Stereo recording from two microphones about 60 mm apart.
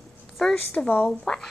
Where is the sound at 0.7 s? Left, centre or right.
Left.